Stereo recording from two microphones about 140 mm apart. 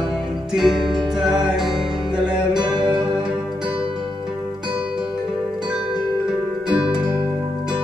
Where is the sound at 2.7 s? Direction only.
35° right (ahead or behind).